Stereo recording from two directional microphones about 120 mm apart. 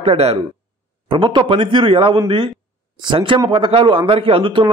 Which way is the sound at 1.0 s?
40° right (ahead or behind).